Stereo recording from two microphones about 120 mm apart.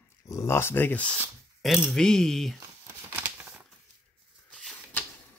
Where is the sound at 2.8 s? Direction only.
15° right (ahead or behind).